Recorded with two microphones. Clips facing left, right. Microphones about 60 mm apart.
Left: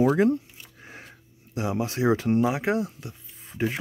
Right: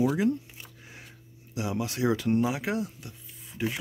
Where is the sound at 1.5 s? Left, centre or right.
Left.